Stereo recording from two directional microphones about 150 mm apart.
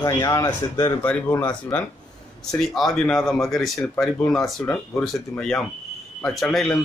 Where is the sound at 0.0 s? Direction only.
25° left (ahead or behind).